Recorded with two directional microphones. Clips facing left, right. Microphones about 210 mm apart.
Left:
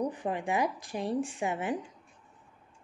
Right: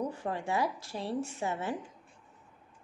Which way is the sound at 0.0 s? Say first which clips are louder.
Left 3 dB; 15° left (ahead or behind).